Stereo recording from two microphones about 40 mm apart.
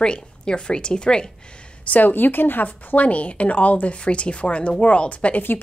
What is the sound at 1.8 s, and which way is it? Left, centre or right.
Speech, left.